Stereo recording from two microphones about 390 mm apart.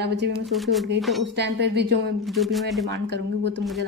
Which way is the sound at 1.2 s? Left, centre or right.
Right.